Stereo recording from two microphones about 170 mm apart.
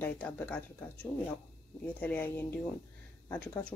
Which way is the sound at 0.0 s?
10° left (ahead or behind).